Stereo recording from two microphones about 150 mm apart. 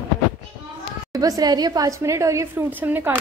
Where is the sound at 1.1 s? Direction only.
25° right (ahead or behind).